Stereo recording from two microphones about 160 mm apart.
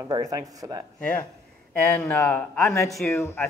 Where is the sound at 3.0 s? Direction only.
15° left (ahead or behind).